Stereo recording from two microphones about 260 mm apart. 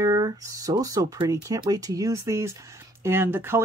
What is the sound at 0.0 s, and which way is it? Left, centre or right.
Speech, centre.